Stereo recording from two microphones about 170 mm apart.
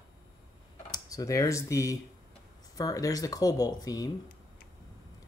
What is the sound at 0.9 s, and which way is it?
Speech, 20° left (ahead or behind).